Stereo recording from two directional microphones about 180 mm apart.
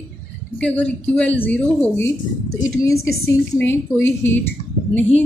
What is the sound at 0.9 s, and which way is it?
A woman's voice, 5° left (ahead or behind).